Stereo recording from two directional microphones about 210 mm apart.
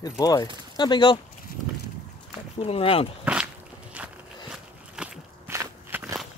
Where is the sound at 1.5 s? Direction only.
45° left (ahead or behind).